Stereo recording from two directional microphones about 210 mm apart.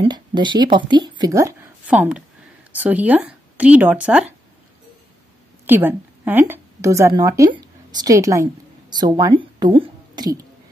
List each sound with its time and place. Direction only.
0.0 s speech: 20° right (ahead or behind); by 4.3 s 5° right (ahead or behind)
5.7 s a woman's voice: 10° right (ahead or behind)